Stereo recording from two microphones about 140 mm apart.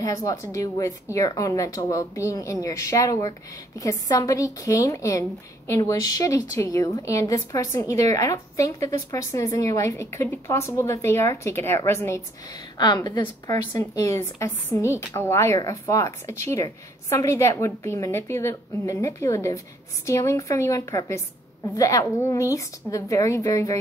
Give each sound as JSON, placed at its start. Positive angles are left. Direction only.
{"t": 0.0, "sound": "a woman's voice", "side_deg": 25}
{"t": 12.7, "sound": "a woman's voice", "side_deg": 30}